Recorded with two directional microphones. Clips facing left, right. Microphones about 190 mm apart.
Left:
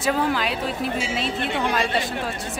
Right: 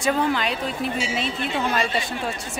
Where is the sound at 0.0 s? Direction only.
5° left (ahead or behind).